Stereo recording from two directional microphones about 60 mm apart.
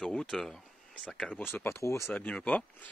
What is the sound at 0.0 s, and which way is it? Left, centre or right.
Speech, centre.